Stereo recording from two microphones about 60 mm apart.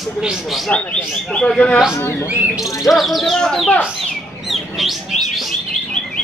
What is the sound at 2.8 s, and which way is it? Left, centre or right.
Bird, centre.